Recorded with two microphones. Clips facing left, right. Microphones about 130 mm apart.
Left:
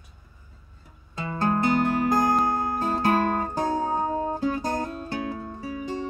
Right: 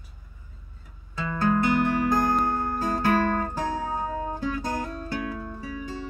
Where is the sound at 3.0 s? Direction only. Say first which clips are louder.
Even; 35° left (ahead or behind).